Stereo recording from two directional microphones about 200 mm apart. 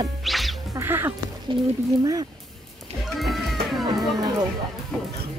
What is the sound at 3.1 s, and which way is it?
Music, centre (ahead or behind).